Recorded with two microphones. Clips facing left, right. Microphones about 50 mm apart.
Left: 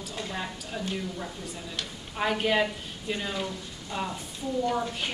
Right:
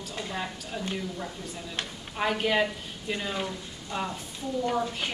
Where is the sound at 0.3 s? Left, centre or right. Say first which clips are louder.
Right 2 dB; centre.